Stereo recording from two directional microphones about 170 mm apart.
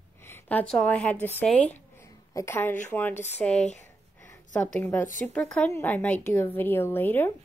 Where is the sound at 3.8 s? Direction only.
15° left (ahead or behind).